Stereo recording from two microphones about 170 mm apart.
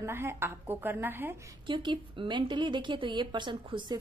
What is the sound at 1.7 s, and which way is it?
A woman's voice, 30° right (ahead or behind).